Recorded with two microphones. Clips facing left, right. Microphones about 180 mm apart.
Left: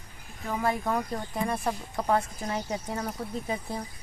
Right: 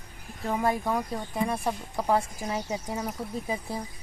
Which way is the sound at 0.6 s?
15° right (ahead or behind).